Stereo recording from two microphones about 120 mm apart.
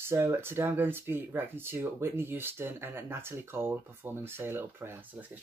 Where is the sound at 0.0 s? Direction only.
20° right (ahead or behind).